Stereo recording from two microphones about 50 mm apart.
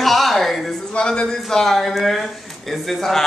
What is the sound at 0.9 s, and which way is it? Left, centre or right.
Speech, centre.